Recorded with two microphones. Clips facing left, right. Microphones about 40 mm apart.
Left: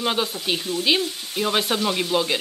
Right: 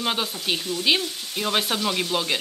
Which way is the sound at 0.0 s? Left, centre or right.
Centre.